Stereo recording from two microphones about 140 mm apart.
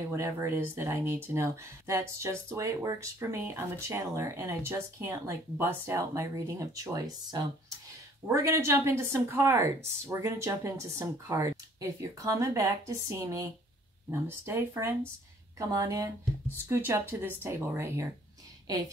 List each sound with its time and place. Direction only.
0.1 s speech: 20° right (ahead or behind)